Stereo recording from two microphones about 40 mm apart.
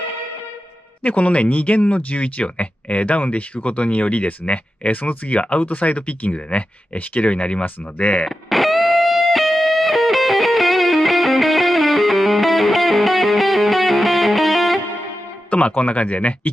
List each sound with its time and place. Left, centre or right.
1.0 s speech: left
8.3 s music: centre
15.5 s speech: left